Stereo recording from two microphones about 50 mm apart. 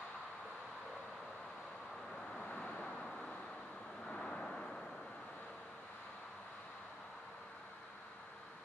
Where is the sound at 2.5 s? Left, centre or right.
Left.